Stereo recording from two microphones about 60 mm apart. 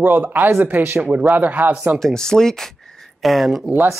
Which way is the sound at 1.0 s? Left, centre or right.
Centre.